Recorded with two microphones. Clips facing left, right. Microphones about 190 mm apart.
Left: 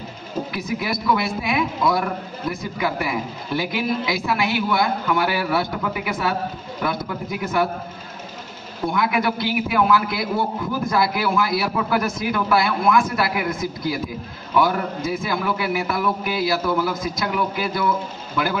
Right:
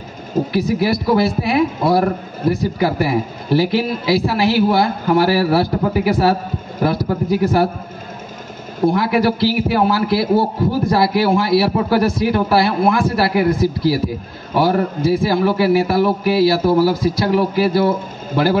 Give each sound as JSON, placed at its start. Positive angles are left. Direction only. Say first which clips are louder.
{"t": 0.5, "sound": "a man's voice", "louder": "right 10 dB", "side_deg": -35}
{"t": 8.8, "sound": "a man's voice", "louder": "right 6 dB", "side_deg": -35}